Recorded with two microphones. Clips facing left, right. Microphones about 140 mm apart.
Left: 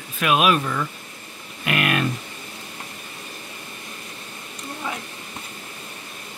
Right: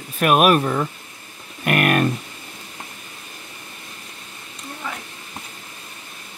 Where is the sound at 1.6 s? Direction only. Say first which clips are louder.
Right 4 dB; 45° right (ahead or behind).